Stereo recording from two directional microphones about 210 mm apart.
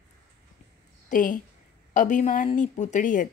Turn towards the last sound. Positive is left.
turn(degrees=40)  # may be behind; listen again after turning